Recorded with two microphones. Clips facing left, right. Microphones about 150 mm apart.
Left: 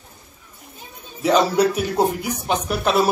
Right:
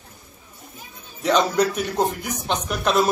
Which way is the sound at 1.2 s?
5° left (ahead or behind).